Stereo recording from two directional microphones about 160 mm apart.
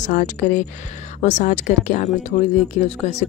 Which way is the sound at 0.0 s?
50° left (ahead or behind).